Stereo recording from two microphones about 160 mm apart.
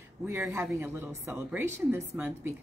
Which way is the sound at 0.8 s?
15° right (ahead or behind).